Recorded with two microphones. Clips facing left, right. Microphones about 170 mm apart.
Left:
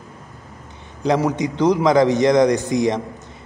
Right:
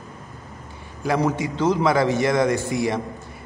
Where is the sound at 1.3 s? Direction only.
15° left (ahead or behind).